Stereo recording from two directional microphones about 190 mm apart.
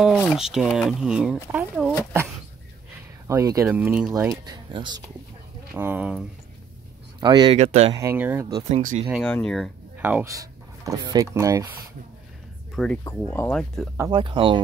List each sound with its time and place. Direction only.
0.0 s speech: centre (ahead or behind)
3.3 s speech: 15° right (ahead or behind)
5.8 s speech: 10° right (ahead or behind)
7.2 s speech: 25° right (ahead or behind)
7.5 s speech: 35° right (ahead or behind)
7.9 s speech: 15° right (ahead or behind)
8.6 s speech: 40° right (ahead or behind)
9.1 s speech: 5° left (ahead or behind)
9.9 s speech: 10° right (ahead or behind)
12.7 s speech: 5° left (ahead or behind)
14.1 s speech: 25° right (ahead or behind)